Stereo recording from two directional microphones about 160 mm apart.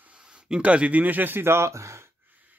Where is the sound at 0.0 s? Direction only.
5° right (ahead or behind).